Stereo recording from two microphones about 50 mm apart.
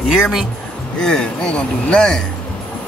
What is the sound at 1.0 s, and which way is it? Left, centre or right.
Speech, centre.